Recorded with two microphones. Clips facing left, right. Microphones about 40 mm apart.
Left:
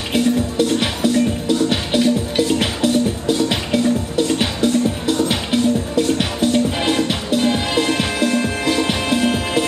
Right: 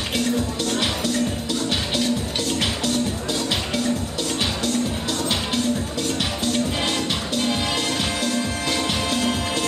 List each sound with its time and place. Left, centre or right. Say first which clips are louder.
0.1 s music: left 7 dB; centre